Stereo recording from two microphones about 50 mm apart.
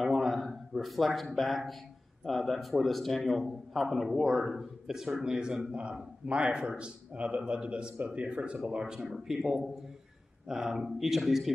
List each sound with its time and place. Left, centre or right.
0.0 s a sound: centre
2.2 s a man's voice: centre
6.2 s a man's voice: right
6.6 s speech: centre
7.2 s a man's voice: right; by 11.5 s centre